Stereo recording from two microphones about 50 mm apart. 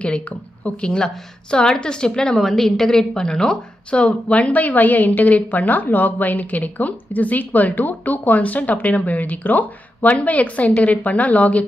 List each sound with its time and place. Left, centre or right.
0.7 s a woman's voice: centre